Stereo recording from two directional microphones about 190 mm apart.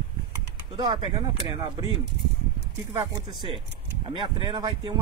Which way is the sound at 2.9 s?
25° right (ahead or behind).